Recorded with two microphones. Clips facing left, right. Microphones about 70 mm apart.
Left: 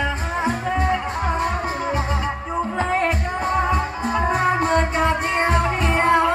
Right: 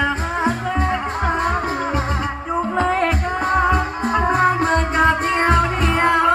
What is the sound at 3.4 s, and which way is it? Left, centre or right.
Music, right.